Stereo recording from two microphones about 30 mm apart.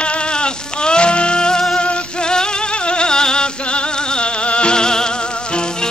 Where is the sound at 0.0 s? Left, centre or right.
Left.